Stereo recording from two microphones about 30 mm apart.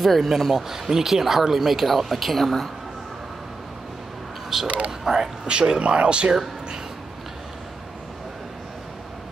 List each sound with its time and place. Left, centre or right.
0.0 s speech: centre
4.5 s speech: centre; by 6.3 s right